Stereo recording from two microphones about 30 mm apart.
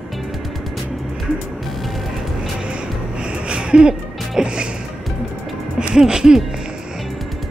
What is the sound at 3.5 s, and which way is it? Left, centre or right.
Music, right.